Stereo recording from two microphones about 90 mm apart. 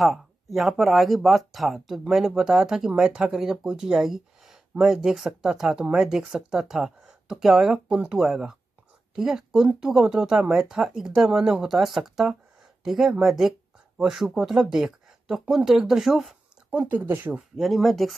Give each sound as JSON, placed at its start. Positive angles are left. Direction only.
{"t": 0.0, "sound": "speech", "side_deg": 0}
{"t": 16.7, "sound": "speech", "side_deg": -20}
{"t": 17.6, "sound": "speech", "side_deg": 0}